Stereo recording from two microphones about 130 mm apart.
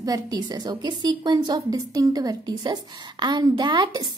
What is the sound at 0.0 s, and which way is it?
A woman's voice, 30° right (ahead or behind).